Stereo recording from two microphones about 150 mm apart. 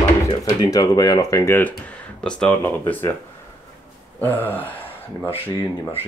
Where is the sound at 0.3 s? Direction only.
25° left (ahead or behind).